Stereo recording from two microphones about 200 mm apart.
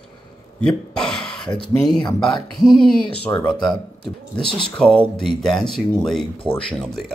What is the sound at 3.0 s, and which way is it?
Speech, 20° left (ahead or behind).